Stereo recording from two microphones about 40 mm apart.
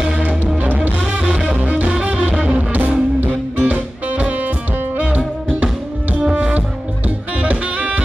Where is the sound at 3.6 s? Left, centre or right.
Right.